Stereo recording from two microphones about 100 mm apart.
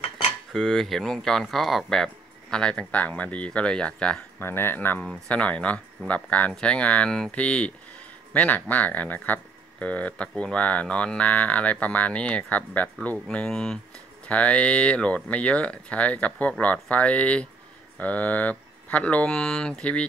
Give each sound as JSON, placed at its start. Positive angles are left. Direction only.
{"t": 0.5, "sound": "speech", "side_deg": 0}
{"t": 4.4, "sound": "speech", "side_deg": 25}